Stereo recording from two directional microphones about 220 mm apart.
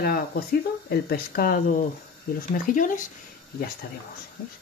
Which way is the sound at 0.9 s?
45° left (ahead or behind).